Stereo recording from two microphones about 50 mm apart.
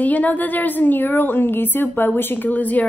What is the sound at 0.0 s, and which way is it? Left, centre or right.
A woman's voice, left.